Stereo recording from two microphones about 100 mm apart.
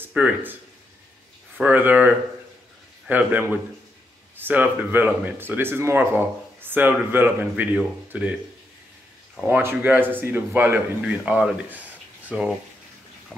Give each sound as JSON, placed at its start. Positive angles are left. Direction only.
{"t": 0.0, "sound": "speech", "side_deg": -15}
{"t": 1.6, "sound": "a man's voice", "side_deg": -15}
{"t": 9.5, "sound": "a man's voice", "side_deg": -20}
{"t": 13.3, "sound": "a sound", "side_deg": 5}